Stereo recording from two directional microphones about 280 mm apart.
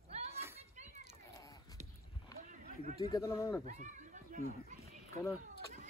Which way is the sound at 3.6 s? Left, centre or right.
Right.